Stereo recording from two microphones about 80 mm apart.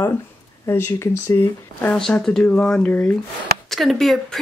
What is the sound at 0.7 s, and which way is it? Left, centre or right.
Speech, left.